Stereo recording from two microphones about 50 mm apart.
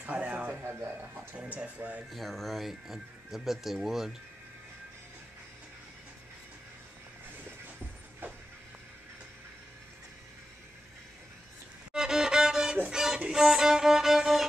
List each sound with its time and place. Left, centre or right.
0.0 s a sound: right
1.6 s speech: right
2.0 s speech: centre
11.9 s music: centre
13.3 s violin: centre